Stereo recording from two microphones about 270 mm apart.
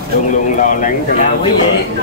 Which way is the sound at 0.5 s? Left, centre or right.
Left.